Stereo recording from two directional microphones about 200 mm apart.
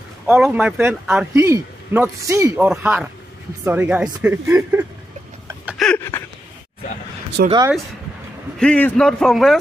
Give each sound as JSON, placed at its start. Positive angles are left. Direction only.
{"t": 0.3, "sound": "a man's voice", "side_deg": -5}
{"t": 5.7, "sound": "a sound", "side_deg": 5}
{"t": 7.4, "sound": "speech", "side_deg": -50}
{"t": 8.5, "sound": "a man's voice", "side_deg": 5}